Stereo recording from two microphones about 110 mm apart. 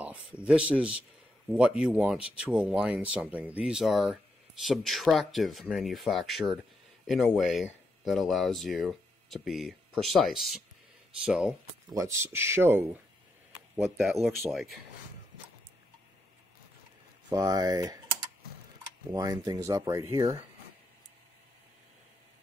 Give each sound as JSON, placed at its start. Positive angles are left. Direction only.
{"t": 0.4, "sound": "speech", "side_deg": -10}
{"t": 11.9, "sound": "speech", "side_deg": -25}
{"t": 14.5, "sound": "speech", "side_deg": 0}
{"t": 17.3, "sound": "speech", "side_deg": -35}
{"t": 19.1, "sound": "speech", "side_deg": -30}